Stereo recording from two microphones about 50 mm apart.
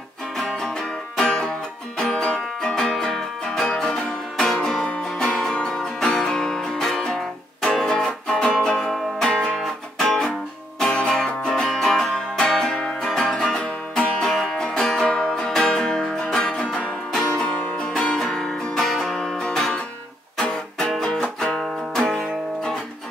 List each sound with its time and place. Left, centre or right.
0.4 s music: centre
0.7 s music: centre
11.7 s music: centre
14.2 s music: centre
18.9 s music: centre